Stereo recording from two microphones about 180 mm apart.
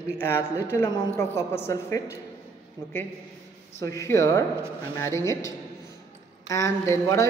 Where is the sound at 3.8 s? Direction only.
15° left (ahead or behind).